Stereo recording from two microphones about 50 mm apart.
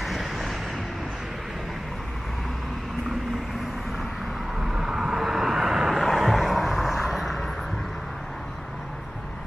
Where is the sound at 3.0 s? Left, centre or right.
Centre.